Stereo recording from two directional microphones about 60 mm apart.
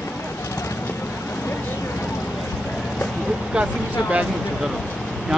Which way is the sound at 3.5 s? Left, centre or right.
Centre.